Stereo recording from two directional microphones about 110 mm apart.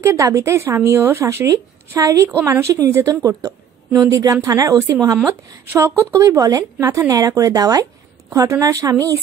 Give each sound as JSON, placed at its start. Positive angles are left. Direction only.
{"t": 0.0, "sound": "a woman's voice", "side_deg": -25}